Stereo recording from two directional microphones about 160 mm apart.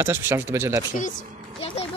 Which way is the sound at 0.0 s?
15° right (ahead or behind).